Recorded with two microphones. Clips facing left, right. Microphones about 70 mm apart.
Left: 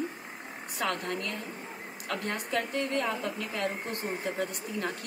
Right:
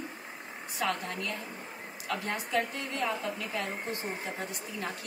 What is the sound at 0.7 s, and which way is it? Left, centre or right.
A woman's voice, left.